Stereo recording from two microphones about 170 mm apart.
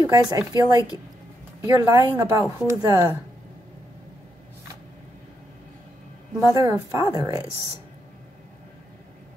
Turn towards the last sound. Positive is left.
turn(degrees=-20)  # may be behind; listen again after turning